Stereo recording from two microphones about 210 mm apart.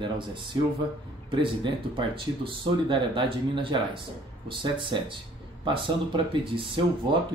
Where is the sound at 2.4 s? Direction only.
25° right (ahead or behind).